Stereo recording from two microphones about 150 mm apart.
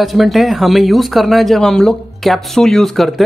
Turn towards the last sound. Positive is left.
turn(degrees=0)  # may be behind; listen again after turning